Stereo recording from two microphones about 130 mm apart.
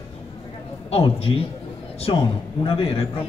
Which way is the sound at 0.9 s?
50° left (ahead or behind).